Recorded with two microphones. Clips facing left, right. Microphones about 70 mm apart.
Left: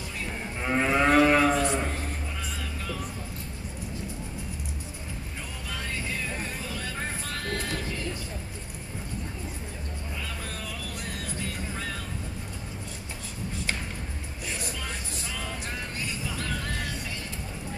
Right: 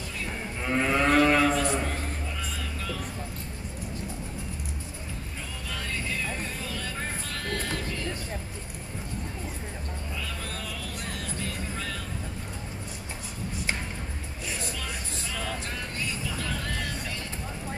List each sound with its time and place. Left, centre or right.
0.7 s moo: centre
7.5 s music: left